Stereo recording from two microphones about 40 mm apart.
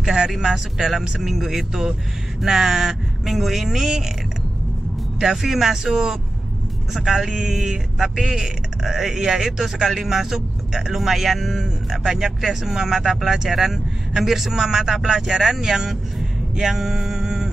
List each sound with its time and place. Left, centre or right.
0.0 s a sound: centre
0.3 s speech: centre
5.2 s speech: centre